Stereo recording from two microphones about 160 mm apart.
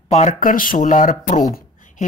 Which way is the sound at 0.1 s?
45° left (ahead or behind).